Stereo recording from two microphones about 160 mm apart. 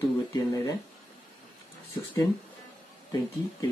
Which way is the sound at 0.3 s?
20° left (ahead or behind).